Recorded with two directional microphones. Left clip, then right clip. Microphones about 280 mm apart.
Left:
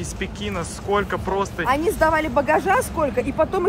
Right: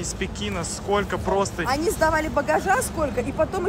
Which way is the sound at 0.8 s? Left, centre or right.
Centre.